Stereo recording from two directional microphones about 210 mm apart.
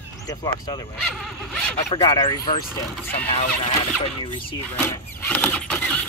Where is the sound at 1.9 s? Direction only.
20° left (ahead or behind).